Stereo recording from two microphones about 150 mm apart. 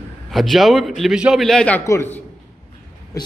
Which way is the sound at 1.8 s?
20° left (ahead or behind).